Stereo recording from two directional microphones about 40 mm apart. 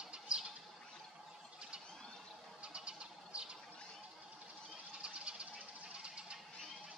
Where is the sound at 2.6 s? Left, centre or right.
Right.